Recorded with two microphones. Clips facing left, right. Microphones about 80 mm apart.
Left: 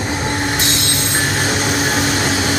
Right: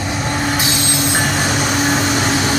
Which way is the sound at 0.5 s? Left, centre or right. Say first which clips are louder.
Right 1 dB; centre.